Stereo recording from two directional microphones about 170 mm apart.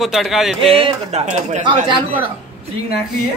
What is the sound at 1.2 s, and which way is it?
Speech, 45° right (ahead or behind).